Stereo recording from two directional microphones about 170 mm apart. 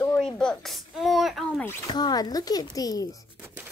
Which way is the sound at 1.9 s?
25° left (ahead or behind).